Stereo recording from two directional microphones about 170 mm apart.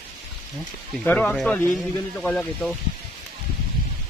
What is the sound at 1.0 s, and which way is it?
Speech, 10° left (ahead or behind).